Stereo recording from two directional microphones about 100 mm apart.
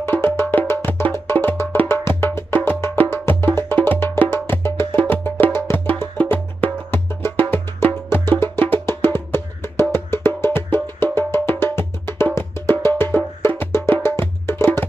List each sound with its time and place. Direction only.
0.0 s music: 25° left (ahead or behind)
9.9 s wood block: 25° left (ahead or behind)
11.1 s music: 25° left (ahead or behind)